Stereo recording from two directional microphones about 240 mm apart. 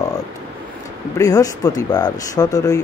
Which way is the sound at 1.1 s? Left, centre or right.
Centre.